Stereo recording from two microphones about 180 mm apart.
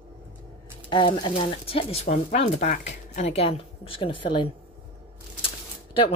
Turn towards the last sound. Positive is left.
turn(degrees=30)  # may be behind; listen again after turning